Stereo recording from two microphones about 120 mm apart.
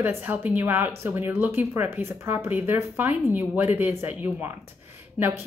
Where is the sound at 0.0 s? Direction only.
15° right (ahead or behind).